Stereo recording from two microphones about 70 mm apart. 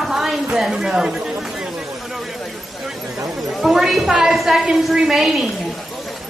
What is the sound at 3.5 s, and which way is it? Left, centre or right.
A woman's voice, centre.